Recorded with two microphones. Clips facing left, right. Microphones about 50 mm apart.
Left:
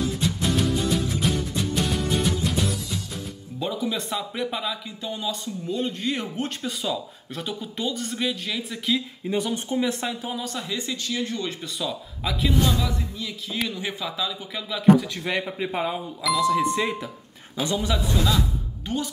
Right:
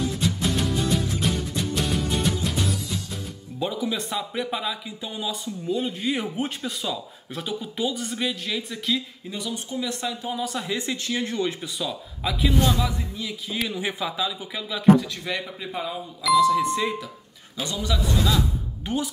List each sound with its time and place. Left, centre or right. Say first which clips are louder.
0.0 s music: even; centre
3.5 s speech: even; centre
9.3 s speech: left 6 dB; left
10.4 s speech: right 3 dB; centre
10.8 s speech: right 1 dB; right
11.6 s speech: even; centre
15.2 s speech: left 4 dB; left
16.3 s speech: right 2 dB; centre
17.6 s speech: left 3 dB; left